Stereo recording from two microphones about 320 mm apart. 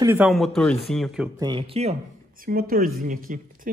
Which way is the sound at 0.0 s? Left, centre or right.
Centre.